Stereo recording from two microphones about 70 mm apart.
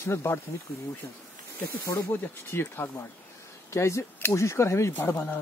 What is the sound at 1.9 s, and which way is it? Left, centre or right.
Speech, left.